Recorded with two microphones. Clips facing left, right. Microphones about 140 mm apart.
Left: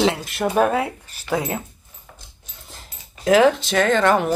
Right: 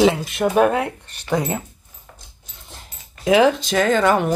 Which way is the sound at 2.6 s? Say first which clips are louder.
Right 1 dB; centre (ahead or behind).